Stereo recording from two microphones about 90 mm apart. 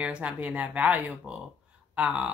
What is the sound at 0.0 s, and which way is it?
Speech, 15° right (ahead or behind).